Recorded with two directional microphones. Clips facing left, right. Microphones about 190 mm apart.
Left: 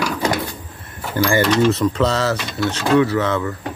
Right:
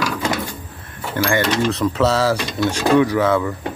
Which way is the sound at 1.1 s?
5° left (ahead or behind).